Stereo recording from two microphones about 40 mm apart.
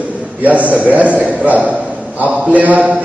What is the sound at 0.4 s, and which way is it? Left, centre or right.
A man's voice, right.